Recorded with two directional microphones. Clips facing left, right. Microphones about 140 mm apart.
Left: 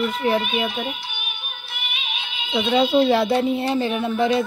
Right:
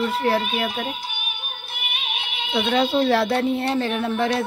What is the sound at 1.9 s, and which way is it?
Music, 65° right (ahead or behind).